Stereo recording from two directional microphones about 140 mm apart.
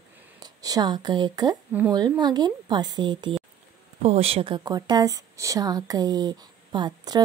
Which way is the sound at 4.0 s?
45° right (ahead or behind).